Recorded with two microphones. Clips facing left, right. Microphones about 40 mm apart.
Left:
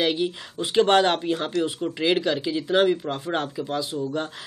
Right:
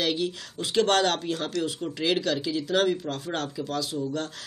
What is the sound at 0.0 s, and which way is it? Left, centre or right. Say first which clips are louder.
Speech: left 3 dB; left.